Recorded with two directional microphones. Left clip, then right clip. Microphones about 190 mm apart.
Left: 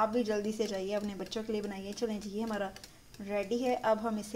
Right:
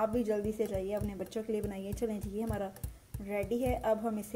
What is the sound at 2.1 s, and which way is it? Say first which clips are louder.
A child's voice: left 1 dB; 15° right (ahead or behind).